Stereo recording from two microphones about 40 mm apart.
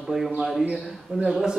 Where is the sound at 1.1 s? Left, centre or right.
Right.